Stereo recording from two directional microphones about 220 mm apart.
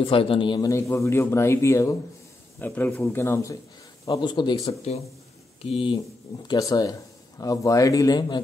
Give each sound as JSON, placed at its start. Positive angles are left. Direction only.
{"t": 0.0, "sound": "a man's voice", "side_deg": 25}